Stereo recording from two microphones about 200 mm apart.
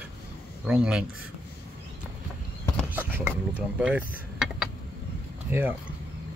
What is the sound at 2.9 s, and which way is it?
Mechanisms, 10° right (ahead or behind).